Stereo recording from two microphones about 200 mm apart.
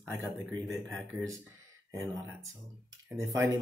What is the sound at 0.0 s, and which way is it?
Speech, 15° right (ahead or behind).